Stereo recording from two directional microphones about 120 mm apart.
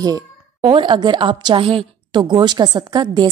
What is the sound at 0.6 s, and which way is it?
A woman's voice, 45° right (ahead or behind).